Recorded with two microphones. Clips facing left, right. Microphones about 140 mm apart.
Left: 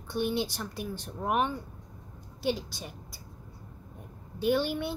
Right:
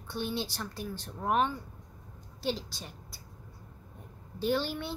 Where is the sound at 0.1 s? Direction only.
15° left (ahead or behind).